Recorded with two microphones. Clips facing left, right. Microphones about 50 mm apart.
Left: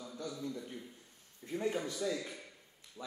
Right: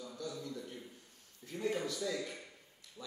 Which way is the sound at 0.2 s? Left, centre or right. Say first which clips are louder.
Left 2 dB; left.